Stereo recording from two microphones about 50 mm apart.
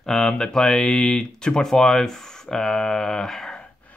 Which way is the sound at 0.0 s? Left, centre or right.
Centre.